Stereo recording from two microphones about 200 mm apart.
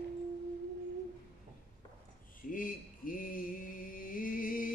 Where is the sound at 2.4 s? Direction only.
45° left (ahead or behind).